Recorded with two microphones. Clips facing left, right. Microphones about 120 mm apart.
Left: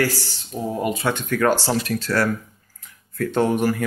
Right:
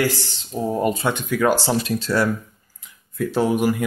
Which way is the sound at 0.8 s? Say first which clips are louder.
Right 1 dB; 35° right (ahead or behind).